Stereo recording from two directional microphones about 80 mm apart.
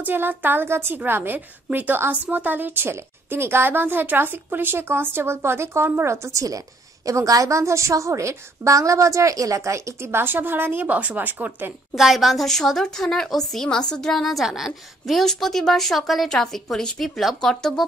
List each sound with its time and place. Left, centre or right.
0.0 s a woman's voice: right
11.9 s a woman's voice: centre